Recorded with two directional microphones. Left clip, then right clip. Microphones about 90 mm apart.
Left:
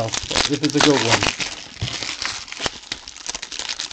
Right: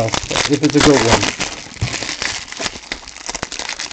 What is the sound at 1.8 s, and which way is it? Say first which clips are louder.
Crumpling: right 4 dB; 30° right (ahead or behind).